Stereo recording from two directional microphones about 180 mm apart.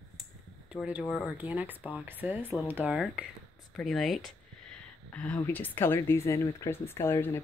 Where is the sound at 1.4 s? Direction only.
10° right (ahead or behind).